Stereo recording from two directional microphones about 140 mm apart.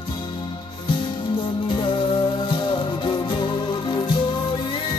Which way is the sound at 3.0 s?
35° left (ahead or behind).